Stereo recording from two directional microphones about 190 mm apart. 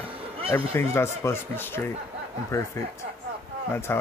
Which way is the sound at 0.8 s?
15° left (ahead or behind).